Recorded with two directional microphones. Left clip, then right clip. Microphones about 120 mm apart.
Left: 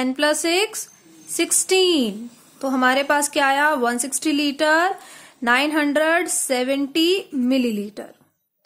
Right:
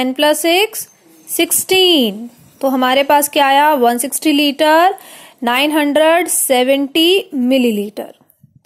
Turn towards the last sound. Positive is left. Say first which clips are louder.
# right 8 dB
turn(degrees=-30)  # may be behind; listen again after turning